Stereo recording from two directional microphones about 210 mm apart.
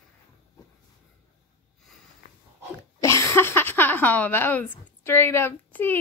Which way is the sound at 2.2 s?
40° left (ahead or behind).